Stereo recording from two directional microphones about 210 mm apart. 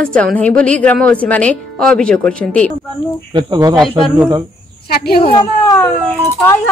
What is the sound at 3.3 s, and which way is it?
Speech, 20° right (ahead or behind).